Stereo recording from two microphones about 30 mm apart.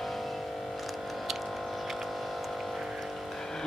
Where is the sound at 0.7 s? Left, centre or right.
Centre.